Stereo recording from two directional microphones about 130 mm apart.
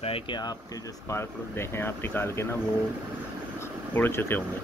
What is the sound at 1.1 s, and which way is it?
Speech, 20° left (ahead or behind).